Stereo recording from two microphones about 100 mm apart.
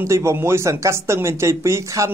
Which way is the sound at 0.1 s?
30° right (ahead or behind).